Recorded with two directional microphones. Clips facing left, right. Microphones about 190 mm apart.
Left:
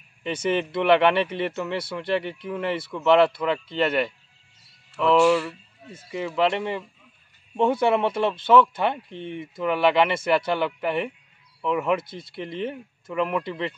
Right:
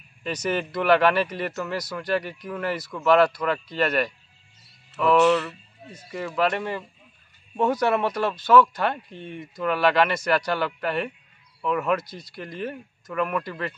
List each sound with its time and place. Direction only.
0.2 s speech: 25° left (ahead or behind)
6.1 s speech: 20° left (ahead or behind)
12.0 s speech: 25° left (ahead or behind)